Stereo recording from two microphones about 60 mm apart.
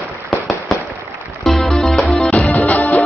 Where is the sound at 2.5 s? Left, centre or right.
Left.